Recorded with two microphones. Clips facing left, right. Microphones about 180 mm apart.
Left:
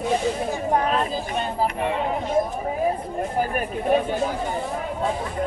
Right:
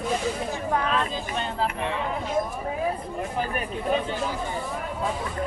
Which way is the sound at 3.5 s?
50° left (ahead or behind).